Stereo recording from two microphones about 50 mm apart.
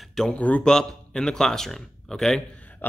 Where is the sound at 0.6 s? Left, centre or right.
Centre.